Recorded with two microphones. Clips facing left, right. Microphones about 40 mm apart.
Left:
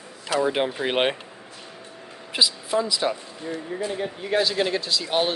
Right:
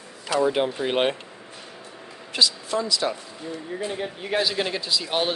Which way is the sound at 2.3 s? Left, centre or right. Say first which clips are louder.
Even; centre.